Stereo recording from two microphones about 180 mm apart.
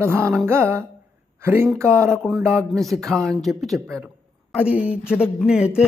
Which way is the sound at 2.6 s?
Centre (ahead or behind).